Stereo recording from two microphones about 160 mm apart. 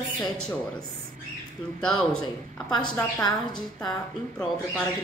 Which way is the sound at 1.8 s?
5° left (ahead or behind).